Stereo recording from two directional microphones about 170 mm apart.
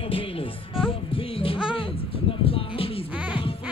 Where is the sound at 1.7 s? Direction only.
30° left (ahead or behind).